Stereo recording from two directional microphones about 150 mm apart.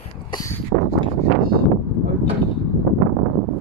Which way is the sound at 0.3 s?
25° left (ahead or behind).